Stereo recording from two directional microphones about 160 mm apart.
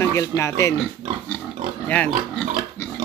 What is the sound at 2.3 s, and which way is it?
Pig, 10° left (ahead or behind).